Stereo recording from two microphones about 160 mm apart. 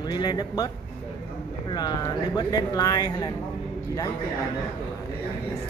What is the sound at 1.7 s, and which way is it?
A man's voice, 25° left (ahead or behind).